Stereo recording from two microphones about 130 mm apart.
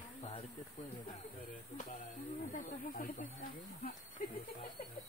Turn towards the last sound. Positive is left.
turn(degrees=90)